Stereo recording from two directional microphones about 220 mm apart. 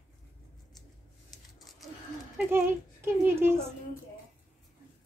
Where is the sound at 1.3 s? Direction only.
Centre (ahead or behind).